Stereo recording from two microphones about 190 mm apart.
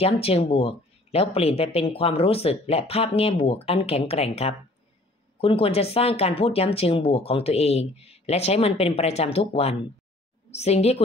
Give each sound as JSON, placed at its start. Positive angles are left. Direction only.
{"t": 0.0, "sound": "speech", "side_deg": 30}